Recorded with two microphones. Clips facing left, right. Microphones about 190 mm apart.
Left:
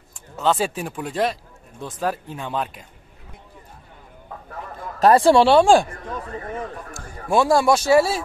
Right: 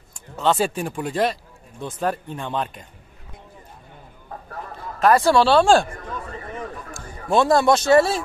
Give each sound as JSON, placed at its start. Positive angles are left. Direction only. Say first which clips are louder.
{"t": 0.1, "sound": "speech", "louder": "even", "side_deg": 0}
{"t": 5.0, "sound": "speech", "louder": "left 2 dB", "side_deg": 30}
{"t": 7.2, "sound": "speech", "louder": "even", "side_deg": 10}